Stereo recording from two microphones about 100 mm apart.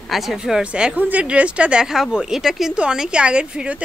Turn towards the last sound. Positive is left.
turn(degrees=-10)  # may be behind; listen again after turning